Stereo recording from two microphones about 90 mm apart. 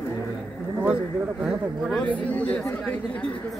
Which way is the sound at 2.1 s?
20° left (ahead or behind).